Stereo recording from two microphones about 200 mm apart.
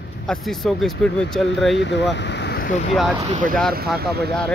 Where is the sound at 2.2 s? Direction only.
60° left (ahead or behind).